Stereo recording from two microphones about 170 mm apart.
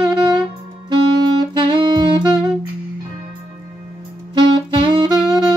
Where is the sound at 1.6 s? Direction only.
30° right (ahead or behind).